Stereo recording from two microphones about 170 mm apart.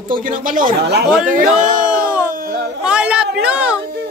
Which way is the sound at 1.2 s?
50° right (ahead or behind).